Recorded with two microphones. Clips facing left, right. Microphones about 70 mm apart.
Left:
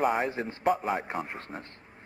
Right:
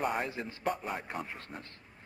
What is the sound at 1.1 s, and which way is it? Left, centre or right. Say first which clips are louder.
Speech: left 5 dB; left.